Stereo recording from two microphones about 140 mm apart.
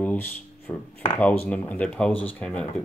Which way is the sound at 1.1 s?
10° left (ahead or behind).